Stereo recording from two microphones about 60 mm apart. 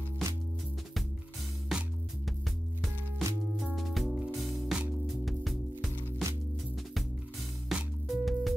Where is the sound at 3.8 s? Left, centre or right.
Centre.